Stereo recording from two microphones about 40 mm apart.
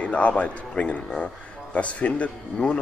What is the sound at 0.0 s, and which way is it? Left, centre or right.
A man's voice, left.